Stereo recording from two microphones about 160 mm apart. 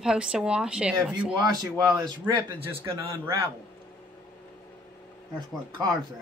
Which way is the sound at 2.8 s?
15° right (ahead or behind).